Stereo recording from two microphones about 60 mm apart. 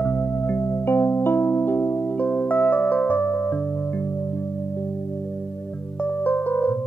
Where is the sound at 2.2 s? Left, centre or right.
Left.